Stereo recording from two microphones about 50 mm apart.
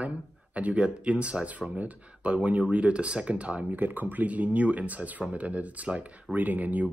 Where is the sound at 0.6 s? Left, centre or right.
Right.